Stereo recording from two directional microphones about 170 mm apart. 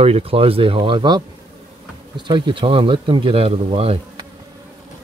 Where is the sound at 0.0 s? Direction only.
35° right (ahead or behind).